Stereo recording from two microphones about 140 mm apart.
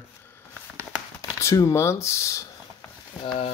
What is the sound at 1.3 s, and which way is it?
Speech, 25° left (ahead or behind).